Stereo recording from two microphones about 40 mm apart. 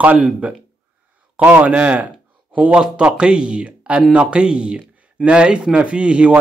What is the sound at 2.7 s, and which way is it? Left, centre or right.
Speech, right.